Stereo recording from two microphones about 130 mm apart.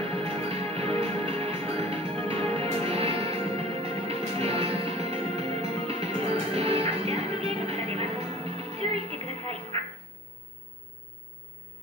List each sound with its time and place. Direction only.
0.0 s music: 50° right (ahead or behind)